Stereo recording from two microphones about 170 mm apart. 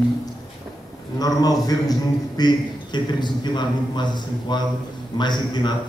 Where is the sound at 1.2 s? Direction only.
20° left (ahead or behind).